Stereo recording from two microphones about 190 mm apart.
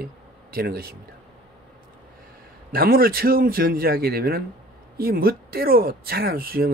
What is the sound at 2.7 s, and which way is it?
Speech, 50° right (ahead or behind).